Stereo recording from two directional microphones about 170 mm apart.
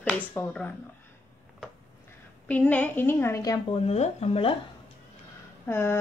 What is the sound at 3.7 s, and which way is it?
Speech, 40° left (ahead or behind).